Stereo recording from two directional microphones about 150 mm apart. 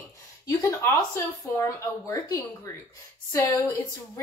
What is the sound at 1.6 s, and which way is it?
A woman's voice, 25° left (ahead or behind).